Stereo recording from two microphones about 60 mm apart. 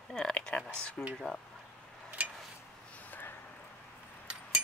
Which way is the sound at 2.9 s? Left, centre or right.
Left.